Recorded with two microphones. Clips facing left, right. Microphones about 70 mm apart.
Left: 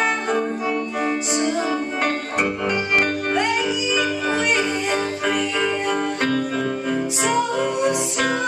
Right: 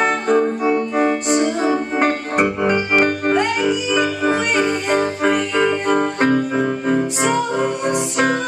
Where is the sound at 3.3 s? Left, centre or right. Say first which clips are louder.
Right 3 dB; centre.